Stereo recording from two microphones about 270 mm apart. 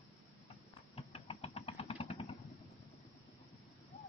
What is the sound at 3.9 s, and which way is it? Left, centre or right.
Owl, left.